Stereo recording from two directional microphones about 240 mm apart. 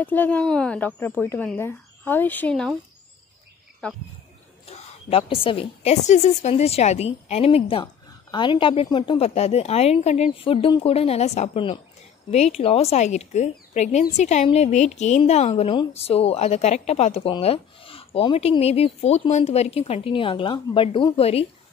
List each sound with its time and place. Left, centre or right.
0.0 s speech: centre
3.8 s speech: centre
4.6 s a woman's voice: left